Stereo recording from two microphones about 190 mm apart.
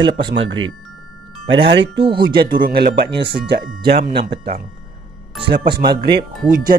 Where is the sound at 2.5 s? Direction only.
50° right (ahead or behind).